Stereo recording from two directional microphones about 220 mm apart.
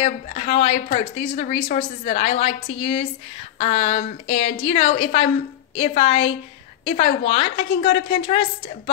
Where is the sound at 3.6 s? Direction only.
30° left (ahead or behind).